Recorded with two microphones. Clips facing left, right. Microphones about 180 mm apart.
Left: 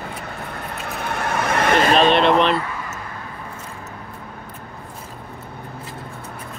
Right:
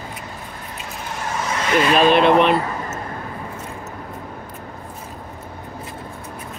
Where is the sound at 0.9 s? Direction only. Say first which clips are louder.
Left 3 dB; 60° left (ahead or behind).